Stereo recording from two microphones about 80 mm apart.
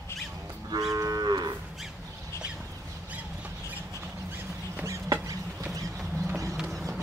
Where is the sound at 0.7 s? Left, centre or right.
Right.